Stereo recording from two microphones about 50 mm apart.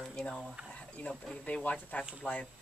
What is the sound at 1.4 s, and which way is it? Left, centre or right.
Speech, left.